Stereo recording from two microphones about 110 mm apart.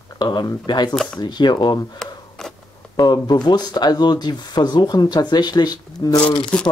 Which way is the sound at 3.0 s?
40° left (ahead or behind).